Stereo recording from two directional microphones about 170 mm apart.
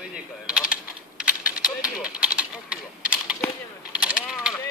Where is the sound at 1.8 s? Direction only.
5° right (ahead or behind).